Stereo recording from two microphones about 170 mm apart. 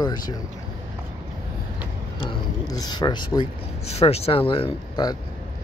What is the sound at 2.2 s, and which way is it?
Speech, 25° left (ahead or behind).